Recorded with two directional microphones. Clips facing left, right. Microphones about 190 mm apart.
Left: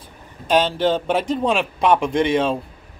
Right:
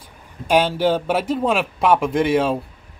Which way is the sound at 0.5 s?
10° right (ahead or behind).